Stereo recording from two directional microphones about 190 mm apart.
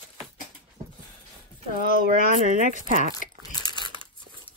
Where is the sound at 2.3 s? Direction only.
45° right (ahead or behind).